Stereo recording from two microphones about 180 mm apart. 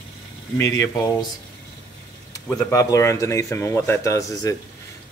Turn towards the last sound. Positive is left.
turn(degrees=15)  # may be behind; listen again after turning